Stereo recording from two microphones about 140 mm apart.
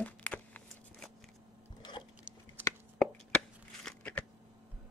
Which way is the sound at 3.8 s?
10° left (ahead or behind).